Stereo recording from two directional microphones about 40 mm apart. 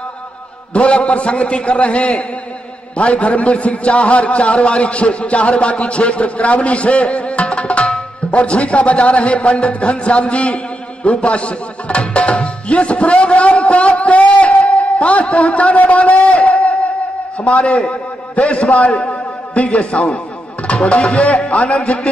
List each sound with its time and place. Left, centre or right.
0.7 s a man's voice: left
11.1 s music: left
17.5 s a man's voice: left